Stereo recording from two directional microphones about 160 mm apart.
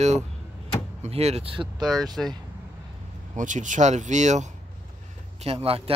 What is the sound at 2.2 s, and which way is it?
Speech, centre (ahead or behind).